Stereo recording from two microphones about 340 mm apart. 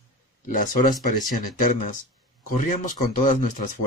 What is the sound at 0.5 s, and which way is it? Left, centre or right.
Speech, left.